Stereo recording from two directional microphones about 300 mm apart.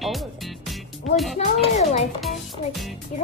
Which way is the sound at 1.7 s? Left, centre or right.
Left.